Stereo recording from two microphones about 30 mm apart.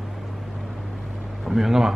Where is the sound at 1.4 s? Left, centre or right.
Centre.